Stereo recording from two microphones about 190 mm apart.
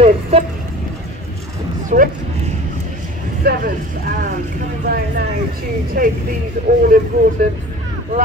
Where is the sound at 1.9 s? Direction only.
40° right (ahead or behind).